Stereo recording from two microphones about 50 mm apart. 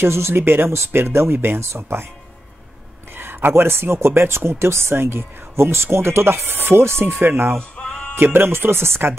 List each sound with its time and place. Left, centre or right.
0.0 s speech: right
3.2 s speech: right